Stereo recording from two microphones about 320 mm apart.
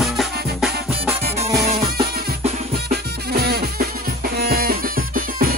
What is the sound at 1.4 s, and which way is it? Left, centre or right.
Music, centre.